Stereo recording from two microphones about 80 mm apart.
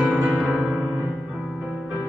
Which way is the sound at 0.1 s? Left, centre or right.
Centre.